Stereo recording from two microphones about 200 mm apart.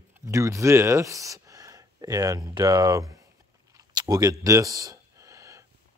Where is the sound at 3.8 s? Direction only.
20° right (ahead or behind).